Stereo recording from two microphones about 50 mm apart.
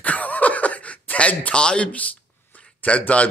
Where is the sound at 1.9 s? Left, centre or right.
Left.